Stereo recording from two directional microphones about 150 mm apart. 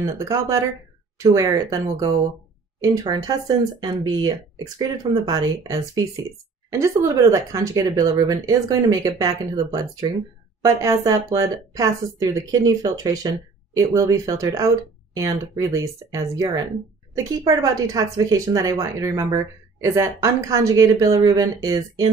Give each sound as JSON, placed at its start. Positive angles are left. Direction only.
{"t": 0.0, "sound": "speech", "side_deg": -20}
{"t": 17.5, "sound": "speech", "side_deg": -25}